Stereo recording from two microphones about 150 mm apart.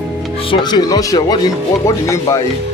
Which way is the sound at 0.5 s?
30° left (ahead or behind).